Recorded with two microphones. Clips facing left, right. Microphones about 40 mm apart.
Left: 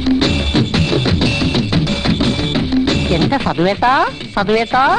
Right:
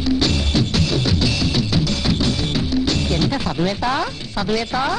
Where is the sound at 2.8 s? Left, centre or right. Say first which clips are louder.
Left 5 dB; left.